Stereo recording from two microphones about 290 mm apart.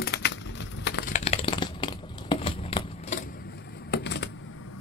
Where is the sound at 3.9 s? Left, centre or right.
Left.